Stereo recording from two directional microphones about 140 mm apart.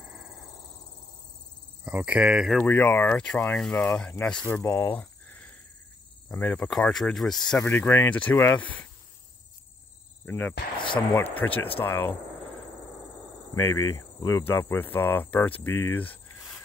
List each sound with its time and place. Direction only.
1.9 s speech: 10° right (ahead or behind)
2.6 s speech: 15° left (ahead or behind)
10.2 s cricket: 15° left (ahead or behind)
11.0 s speech: 20° left (ahead or behind)
13.6 s speech: 20° left (ahead or behind)